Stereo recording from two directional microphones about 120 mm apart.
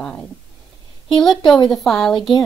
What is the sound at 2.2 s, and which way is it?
Speech, 45° left (ahead or behind).